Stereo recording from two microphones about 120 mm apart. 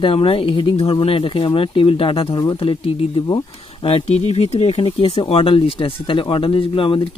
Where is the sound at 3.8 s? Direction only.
55° left (ahead or behind).